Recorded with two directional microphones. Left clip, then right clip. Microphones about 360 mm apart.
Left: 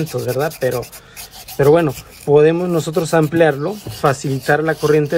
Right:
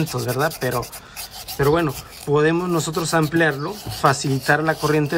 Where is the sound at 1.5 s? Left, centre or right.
Centre.